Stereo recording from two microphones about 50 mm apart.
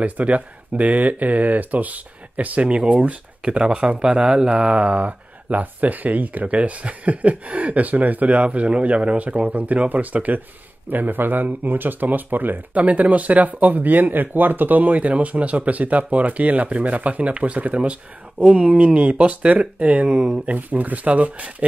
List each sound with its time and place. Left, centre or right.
0.0 s speech: right
20.4 s speech: right